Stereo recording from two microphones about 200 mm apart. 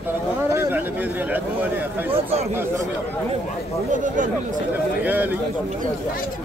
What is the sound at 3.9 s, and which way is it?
Speech, 40° right (ahead or behind).